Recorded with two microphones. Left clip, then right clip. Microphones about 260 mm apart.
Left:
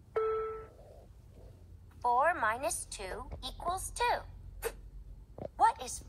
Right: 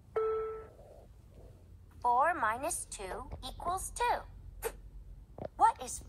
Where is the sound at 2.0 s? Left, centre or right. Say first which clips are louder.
Even; centre.